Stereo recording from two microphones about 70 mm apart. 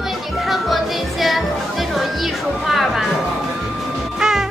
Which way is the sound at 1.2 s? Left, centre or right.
Centre.